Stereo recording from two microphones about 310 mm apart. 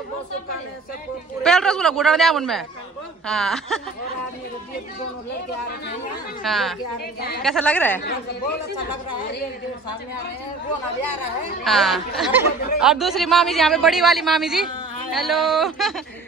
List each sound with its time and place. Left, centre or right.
1.4 s speech: centre
6.4 s speech: centre
7.2 s a woman's voice: left
7.4 s speech: centre
11.6 s speech: centre